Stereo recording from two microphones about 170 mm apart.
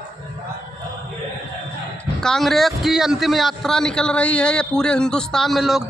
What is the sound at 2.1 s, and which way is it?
A man's voice, centre (ahead or behind).